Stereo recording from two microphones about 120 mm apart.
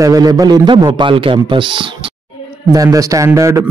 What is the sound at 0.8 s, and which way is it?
Speech, 45° right (ahead or behind).